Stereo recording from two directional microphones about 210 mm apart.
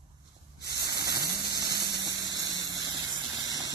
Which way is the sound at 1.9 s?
15° right (ahead or behind).